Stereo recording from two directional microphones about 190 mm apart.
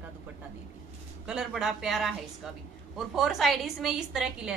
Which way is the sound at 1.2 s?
5° right (ahead or behind).